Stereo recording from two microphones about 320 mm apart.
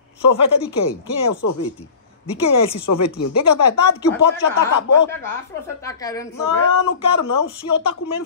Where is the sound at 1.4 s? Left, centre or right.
Left.